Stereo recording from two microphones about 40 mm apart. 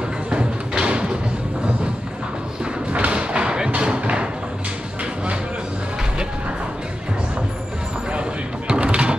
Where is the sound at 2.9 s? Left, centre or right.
Right.